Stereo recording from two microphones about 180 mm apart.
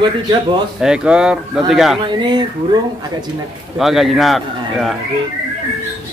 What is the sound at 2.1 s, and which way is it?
Speech, 25° right (ahead or behind).